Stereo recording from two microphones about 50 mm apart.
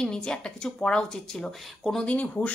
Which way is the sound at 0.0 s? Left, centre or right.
Centre.